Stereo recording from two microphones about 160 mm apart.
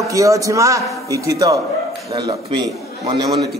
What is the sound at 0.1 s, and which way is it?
A man's voice, 20° right (ahead or behind).